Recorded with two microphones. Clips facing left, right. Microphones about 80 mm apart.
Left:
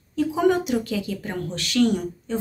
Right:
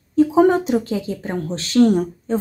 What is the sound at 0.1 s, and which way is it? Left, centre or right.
Speech, right.